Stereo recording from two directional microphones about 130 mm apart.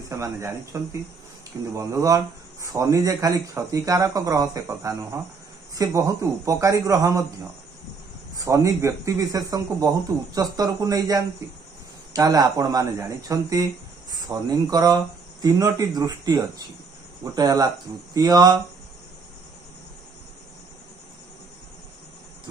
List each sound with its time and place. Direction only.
0.1 s speech: 25° right (ahead or behind)
1.7 s speech: 25° right (ahead or behind)
8.4 s speech: 25° right (ahead or behind)